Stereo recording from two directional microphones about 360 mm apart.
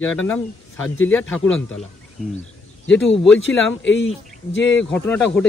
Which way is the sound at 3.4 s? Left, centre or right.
Left.